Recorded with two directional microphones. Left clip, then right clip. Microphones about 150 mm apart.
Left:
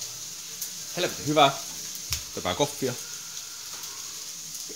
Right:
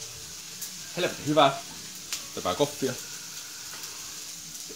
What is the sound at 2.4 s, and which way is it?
Frying, 50° left (ahead or behind).